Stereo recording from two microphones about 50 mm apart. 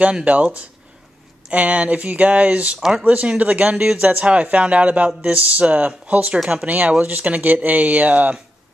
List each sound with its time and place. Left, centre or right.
0.0 s speech: right